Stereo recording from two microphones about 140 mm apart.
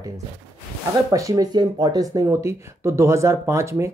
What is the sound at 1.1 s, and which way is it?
Speech, 25° right (ahead or behind).